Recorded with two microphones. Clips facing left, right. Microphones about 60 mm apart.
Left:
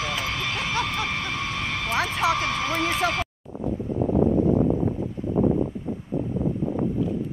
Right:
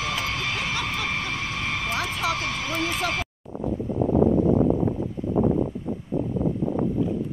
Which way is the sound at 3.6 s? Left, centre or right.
Right.